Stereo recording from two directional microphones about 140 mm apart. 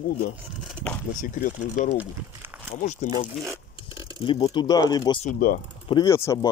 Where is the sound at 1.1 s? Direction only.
65° left (ahead or behind).